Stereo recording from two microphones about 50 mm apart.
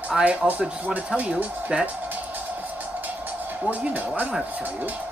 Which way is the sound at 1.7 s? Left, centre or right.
Centre.